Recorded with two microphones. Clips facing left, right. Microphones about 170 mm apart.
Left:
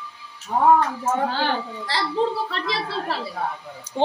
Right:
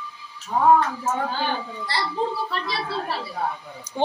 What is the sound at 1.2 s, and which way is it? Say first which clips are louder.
Speech: left 2 dB; 90° left.